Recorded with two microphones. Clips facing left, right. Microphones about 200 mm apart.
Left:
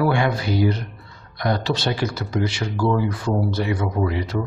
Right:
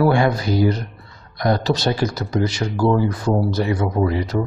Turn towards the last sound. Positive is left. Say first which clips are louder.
# right 3 dB
turn(degrees=-40)  # may be behind; listen again after turning